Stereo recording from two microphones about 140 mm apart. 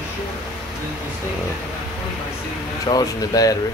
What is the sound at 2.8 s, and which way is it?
Speech, 25° left (ahead or behind).